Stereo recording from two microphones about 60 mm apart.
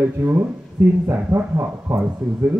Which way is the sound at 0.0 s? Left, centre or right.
Right.